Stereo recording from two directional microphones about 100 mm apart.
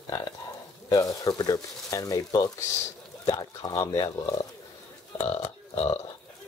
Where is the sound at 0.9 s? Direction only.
35° left (ahead or behind).